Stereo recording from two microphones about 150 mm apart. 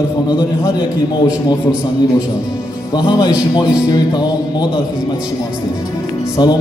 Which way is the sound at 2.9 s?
25° left (ahead or behind).